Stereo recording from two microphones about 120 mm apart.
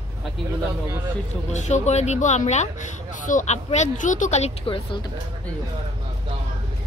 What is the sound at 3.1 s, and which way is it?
Speech, 90° left.